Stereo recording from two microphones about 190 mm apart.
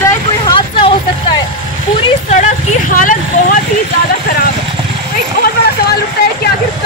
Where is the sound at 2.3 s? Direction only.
35° left (ahead or behind).